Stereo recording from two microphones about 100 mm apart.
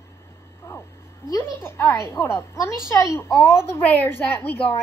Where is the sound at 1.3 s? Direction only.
25° left (ahead or behind).